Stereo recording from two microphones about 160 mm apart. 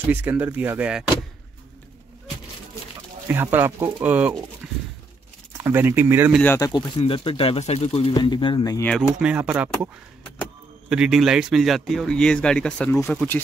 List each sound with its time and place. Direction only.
0.1 s speech: 10° right (ahead or behind)
3.3 s speech: 15° right (ahead or behind)
4.6 s a sound: 5° right (ahead or behind)
5.6 s speech: 15° right (ahead or behind)
6.4 s speech: 20° left (ahead or behind)
7.0 s speech: 35° left (ahead or behind)
8.1 s speech: 30° left (ahead or behind)
9.2 s speech: 10° right (ahead or behind)
10.9 s speech: 5° right (ahead or behind)